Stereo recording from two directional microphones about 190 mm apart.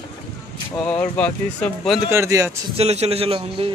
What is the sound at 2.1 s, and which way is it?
Speech, 15° right (ahead or behind).